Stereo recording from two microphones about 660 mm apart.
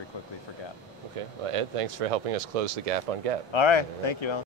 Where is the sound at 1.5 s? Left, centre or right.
Right.